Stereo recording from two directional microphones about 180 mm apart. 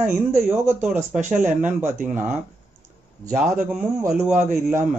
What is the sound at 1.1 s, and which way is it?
Speech, 45° right (ahead or behind).